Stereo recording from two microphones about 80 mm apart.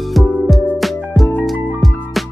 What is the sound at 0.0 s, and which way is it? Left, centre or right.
Music, centre.